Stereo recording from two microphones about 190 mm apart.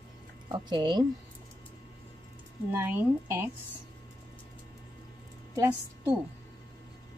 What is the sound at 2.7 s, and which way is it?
Speech, 10° right (ahead or behind).